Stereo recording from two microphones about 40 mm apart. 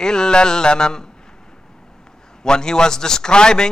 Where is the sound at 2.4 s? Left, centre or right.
Centre.